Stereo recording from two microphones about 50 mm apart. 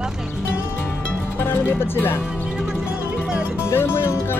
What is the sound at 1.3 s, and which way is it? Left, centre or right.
Speech, left.